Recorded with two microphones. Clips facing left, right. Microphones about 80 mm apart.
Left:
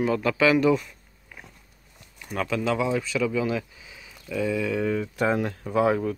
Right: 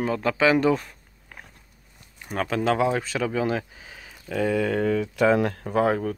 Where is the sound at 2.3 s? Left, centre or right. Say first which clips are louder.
Right 2 dB; right.